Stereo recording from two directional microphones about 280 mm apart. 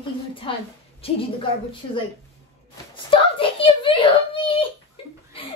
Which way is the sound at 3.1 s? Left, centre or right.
Centre.